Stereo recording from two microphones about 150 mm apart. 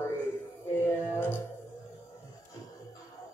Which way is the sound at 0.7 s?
15° left (ahead or behind).